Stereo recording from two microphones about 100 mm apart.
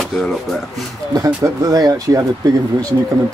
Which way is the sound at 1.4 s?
35° right (ahead or behind).